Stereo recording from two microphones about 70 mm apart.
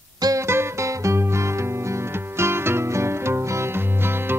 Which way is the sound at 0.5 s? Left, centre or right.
Right.